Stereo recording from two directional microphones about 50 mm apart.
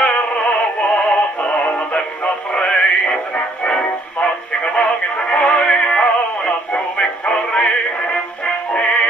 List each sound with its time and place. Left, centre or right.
0.0 s music: left
4.7 s synthetic singing: left